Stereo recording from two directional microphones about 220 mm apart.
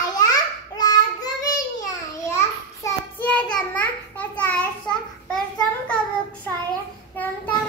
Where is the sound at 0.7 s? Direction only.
15° left (ahead or behind).